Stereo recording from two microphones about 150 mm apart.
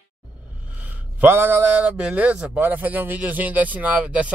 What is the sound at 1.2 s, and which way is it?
A man's voice, 15° right (ahead or behind).